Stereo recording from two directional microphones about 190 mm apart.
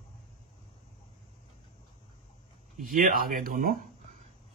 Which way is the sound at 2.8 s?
50° right (ahead or behind).